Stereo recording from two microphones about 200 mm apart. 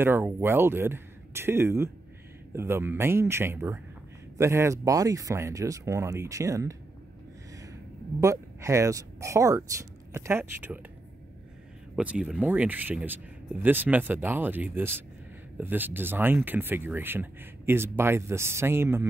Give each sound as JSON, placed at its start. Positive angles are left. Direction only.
{"t": 0.0, "sound": "speech", "side_deg": -10}
{"t": 8.2, "sound": "speech", "side_deg": -15}
{"t": 11.9, "sound": "speech", "side_deg": -5}